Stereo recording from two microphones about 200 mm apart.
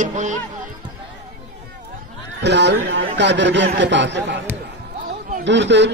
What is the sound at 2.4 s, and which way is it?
A man's voice, 60° right (ahead or behind).